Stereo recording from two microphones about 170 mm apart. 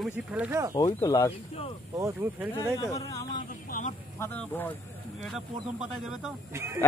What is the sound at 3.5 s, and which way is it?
Vehicle, 50° left (ahead or behind).